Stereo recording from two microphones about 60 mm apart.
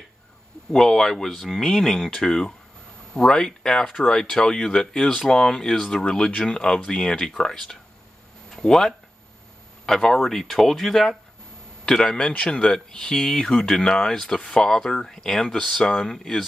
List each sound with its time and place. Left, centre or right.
0.7 s speech: centre